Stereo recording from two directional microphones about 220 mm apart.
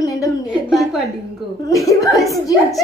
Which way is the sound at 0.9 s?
Centre (ahead or behind).